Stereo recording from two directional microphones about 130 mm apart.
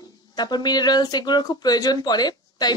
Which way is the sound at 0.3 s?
35° left (ahead or behind).